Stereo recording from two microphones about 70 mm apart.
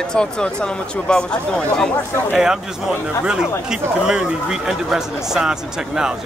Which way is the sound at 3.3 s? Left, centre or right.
Centre.